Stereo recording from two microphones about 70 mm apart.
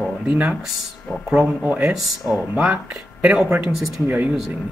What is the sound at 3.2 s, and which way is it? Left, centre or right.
A man's voice, centre.